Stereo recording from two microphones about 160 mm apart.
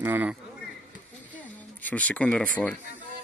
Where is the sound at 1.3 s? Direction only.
10° left (ahead or behind).